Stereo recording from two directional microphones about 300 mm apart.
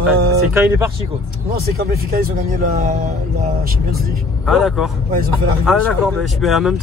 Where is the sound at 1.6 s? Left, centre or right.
Right.